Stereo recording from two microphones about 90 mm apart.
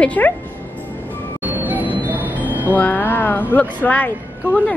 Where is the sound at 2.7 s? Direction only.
20° left (ahead or behind).